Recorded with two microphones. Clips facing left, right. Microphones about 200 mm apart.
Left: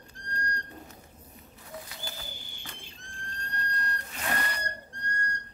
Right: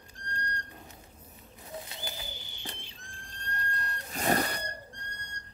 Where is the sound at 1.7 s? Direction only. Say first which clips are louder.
Right 1 dB; 20° right (ahead or behind).